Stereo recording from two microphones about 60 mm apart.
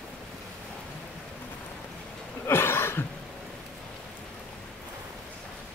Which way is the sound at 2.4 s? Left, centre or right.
Left.